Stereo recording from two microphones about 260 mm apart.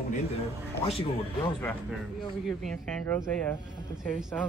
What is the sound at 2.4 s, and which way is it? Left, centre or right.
A woman's voice, centre.